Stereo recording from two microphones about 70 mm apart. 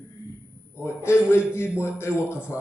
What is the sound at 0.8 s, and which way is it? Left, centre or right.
A man's voice, left.